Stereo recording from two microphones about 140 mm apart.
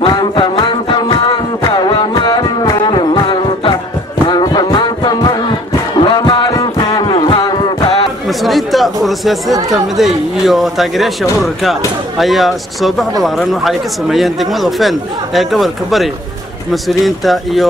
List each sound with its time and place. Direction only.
0.0 s music: 35° left (ahead or behind)
4.3 s a sound: 30° left (ahead or behind)
8.3 s chatter: centre (ahead or behind)
9.0 s speech: centre (ahead or behind)
12.2 s speech: centre (ahead or behind)